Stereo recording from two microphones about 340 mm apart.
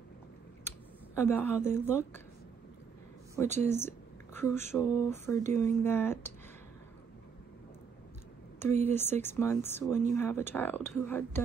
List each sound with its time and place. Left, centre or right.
0.7 s speech: centre
3.4 s speech: centre
3.7 s speech: centre
8.8 s speech: centre